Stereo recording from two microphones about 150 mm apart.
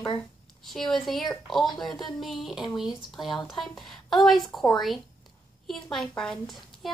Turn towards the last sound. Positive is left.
turn(degrees=0)  # may be behind; listen again after turning